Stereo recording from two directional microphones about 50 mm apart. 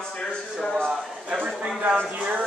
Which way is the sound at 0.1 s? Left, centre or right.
Centre.